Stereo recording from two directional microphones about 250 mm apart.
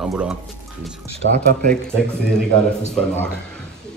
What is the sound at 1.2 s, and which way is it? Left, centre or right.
Speech, right.